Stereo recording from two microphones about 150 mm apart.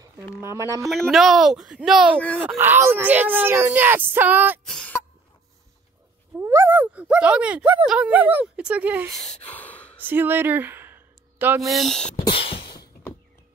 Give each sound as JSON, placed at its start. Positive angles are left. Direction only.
{"t": 0.4, "sound": "speech", "side_deg": -20}
{"t": 0.8, "sound": "speech", "side_deg": 0}
{"t": 2.1, "sound": "speech", "side_deg": 10}
{"t": 2.4, "sound": "speech", "side_deg": -15}
{"t": 4.6, "sound": "cough", "side_deg": 5}
{"t": 6.4, "sound": "speech", "side_deg": -15}
{"t": 9.2, "sound": "gasp", "side_deg": 10}
{"t": 10.0, "sound": "a sound", "side_deg": -15}
{"t": 11.6, "sound": "speech", "side_deg": 0}
{"t": 12.3, "sound": "beatboxing", "side_deg": 35}